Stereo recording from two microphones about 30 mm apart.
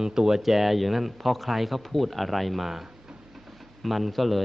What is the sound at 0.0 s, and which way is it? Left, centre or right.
Speech, centre.